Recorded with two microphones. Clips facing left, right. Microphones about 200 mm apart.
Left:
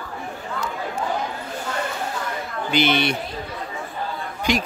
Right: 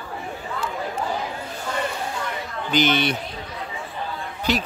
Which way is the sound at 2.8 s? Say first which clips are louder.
Even; 10° left (ahead or behind).